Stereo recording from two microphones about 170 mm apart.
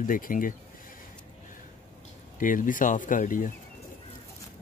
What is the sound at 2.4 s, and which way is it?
Speech, 50° left (ahead or behind).